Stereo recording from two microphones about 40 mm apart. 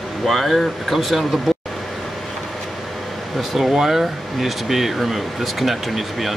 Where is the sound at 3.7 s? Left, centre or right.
Centre.